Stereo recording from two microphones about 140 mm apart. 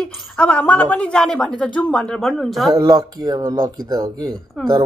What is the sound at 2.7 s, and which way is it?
Speech, 30° right (ahead or behind).